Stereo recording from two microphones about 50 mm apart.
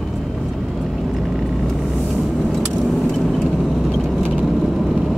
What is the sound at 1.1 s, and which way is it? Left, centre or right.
Vehicle, centre.